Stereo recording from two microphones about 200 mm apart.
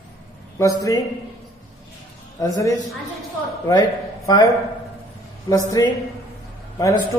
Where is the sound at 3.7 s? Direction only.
20° left (ahead or behind).